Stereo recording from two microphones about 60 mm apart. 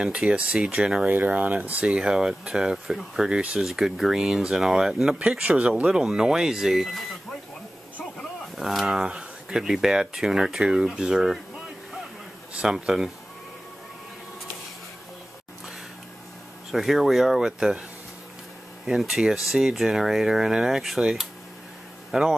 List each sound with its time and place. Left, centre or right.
0.0 s speech: centre
1.0 s speech: right; by 7.2 s centre
8.5 s speech: centre
16.7 s speech: centre
18.9 s speech: centre